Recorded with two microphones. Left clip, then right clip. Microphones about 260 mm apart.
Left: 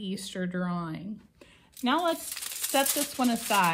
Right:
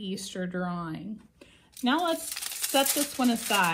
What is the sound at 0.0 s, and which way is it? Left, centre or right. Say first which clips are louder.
A woman's voice: even; left.